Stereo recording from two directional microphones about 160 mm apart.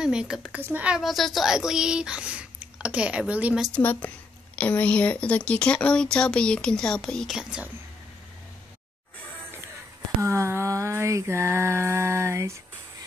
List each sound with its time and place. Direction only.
0.0 s a woman's voice: 5° right (ahead or behind)
3.7 s a woman's voice: 10° left (ahead or behind)
10.2 s mantra: 15° right (ahead or behind)